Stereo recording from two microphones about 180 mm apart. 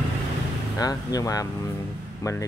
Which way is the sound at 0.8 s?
20° left (ahead or behind).